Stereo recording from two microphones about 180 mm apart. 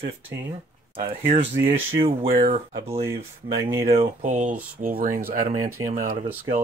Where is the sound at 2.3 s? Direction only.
45° right (ahead or behind).